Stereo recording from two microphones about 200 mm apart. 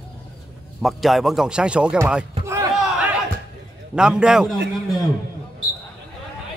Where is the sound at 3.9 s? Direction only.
5° right (ahead or behind).